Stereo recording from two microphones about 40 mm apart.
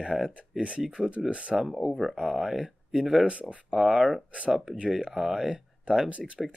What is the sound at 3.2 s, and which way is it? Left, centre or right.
Speech, right.